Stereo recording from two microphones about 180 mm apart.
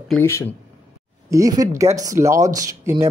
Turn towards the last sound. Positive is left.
turn(degrees=-15)  # may be behind; listen again after turning